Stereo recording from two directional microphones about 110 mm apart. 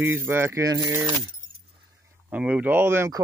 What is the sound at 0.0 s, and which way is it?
Speech, 20° right (ahead or behind).